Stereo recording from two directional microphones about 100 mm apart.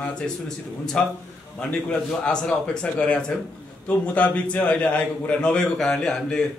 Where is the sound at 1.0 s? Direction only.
10° left (ahead or behind).